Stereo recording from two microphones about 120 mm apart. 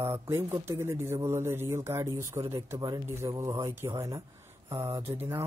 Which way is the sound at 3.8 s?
40° right (ahead or behind).